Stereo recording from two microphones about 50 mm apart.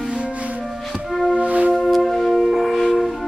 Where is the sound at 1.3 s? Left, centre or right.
Right.